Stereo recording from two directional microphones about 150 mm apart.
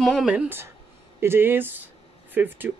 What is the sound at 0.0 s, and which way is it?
Speech, centre (ahead or behind).